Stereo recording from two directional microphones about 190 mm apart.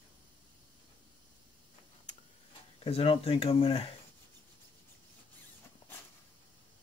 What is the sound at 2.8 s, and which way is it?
Speech, 30° left (ahead or behind).